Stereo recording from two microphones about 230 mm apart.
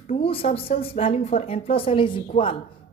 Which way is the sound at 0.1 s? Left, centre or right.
Left.